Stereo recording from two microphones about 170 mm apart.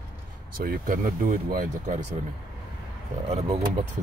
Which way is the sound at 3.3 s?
35° right (ahead or behind).